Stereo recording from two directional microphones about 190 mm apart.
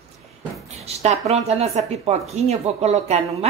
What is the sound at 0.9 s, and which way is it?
A woman's voice, 35° right (ahead or behind).